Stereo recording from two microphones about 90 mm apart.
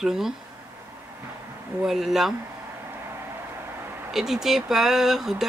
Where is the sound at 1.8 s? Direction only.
5° right (ahead or behind).